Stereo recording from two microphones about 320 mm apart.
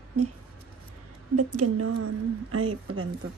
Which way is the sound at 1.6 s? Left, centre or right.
Right.